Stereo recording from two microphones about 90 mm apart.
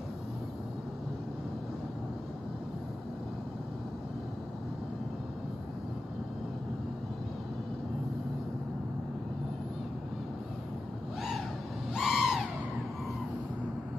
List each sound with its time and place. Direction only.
11.9 s owl: 5° right (ahead or behind)